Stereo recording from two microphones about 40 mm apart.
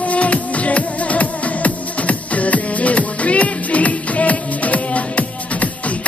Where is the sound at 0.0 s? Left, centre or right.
Left.